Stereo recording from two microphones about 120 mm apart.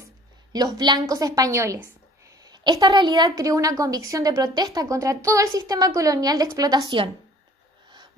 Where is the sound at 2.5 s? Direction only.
35° right (ahead or behind).